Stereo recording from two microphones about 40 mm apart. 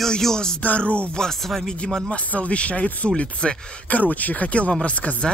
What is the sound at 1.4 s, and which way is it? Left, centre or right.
Speech, centre.